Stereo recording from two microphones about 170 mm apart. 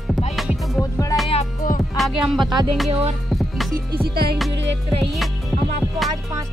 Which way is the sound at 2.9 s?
35° right (ahead or behind).